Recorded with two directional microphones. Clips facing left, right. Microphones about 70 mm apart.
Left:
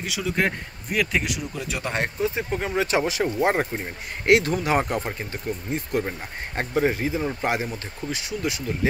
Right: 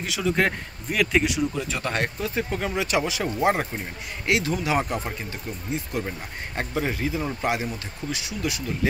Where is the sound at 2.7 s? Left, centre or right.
Left.